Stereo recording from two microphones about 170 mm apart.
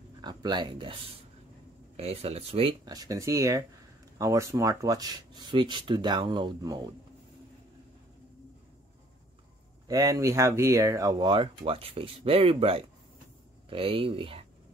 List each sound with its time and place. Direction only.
0.2 s speech: 25° right (ahead or behind)
2.0 s speech: 35° right (ahead or behind)
2.8 s speech: 20° right (ahead or behind)
9.8 s speech: 20° right (ahead or behind)